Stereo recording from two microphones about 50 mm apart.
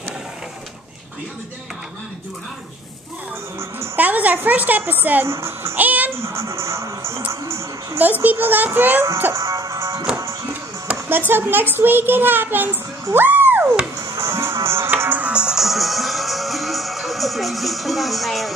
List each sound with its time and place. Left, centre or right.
3.9 s a woman's voice: right
5.2 s speech: right
5.8 s music: right
6.1 s music: right
7.4 s a woman's voice: right
8.0 s a child's voice: right
9.3 s music: right
10.1 s music: right
11.1 s a child's voice: right
13.1 s a sound: right
14.0 s music: right
15.0 s music: right
15.3 s music: centre
15.6 s music: centre